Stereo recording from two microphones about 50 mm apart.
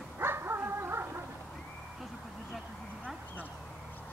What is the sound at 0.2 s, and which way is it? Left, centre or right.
Dog, right.